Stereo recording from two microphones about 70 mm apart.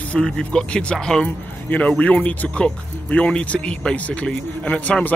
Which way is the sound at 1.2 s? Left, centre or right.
Centre.